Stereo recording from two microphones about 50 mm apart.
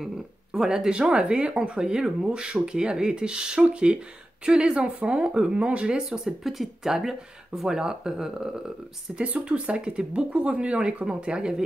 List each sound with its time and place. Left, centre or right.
0.5 s speech: centre